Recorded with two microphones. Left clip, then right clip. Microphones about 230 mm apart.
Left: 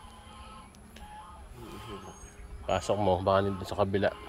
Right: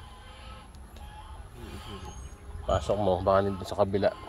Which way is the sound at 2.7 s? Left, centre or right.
Left.